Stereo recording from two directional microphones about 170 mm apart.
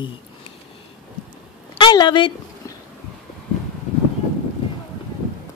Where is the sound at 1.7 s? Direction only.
25° left (ahead or behind).